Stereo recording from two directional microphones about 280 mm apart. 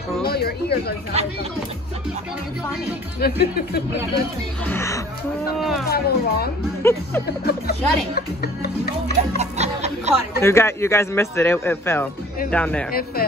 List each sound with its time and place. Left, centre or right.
0.2 s speech: left
1.1 s speech: right
3.2 s speech: left
4.6 s speech: centre
5.9 s speech: left
6.8 s speech: centre
7.4 s speech: left
9.4 s snicker: right
10.4 s speech: centre